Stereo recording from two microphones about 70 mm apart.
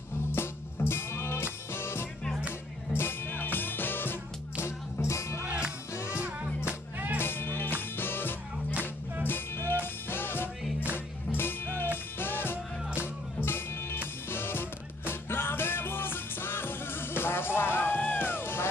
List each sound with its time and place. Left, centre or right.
0.3 s music: left
5.4 s music: right
7.2 s music: left